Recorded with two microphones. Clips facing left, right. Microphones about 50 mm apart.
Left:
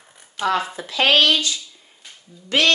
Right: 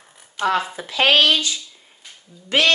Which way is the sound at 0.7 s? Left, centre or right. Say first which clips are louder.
Even; right.